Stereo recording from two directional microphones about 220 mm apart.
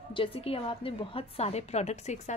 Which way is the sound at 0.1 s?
25° left (ahead or behind).